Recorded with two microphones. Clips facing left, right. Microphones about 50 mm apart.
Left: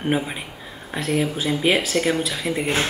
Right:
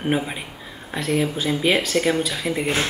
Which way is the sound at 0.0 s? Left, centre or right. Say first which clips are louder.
Even; centre.